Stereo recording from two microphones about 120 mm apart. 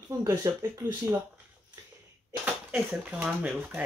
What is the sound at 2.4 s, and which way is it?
Speech, 10° right (ahead or behind).